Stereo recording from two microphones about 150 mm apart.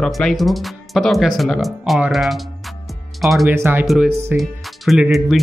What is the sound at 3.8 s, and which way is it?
Speech, centre (ahead or behind).